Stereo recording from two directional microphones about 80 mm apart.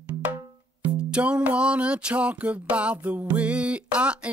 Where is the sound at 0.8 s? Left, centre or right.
Centre.